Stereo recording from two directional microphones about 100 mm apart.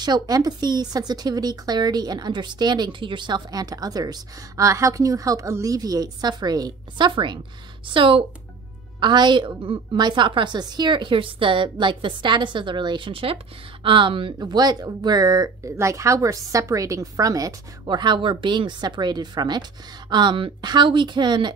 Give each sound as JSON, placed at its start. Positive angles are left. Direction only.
{"t": 0.0, "sound": "a woman's voice", "side_deg": -40}
{"t": 9.0, "sound": "a woman's voice", "side_deg": -50}
{"t": 14.4, "sound": "a woman's voice", "side_deg": -40}